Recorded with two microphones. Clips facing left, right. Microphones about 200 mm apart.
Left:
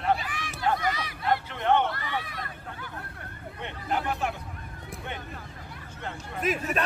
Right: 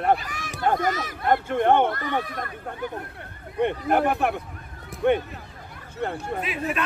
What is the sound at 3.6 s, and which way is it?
Speech, 55° right (ahead or behind).